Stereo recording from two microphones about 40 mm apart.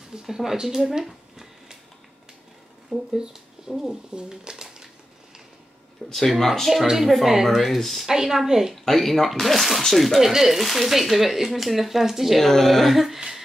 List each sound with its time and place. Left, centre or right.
0.1 s speech: centre
0.7 s a sound: centre
3.1 s speech: centre
6.1 s speech: centre
6.7 s speech: centre
8.1 s speech: centre
8.8 s speech: centre
12.4 s speech: centre